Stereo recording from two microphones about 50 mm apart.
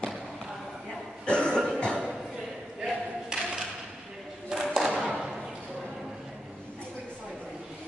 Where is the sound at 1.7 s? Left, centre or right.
Centre.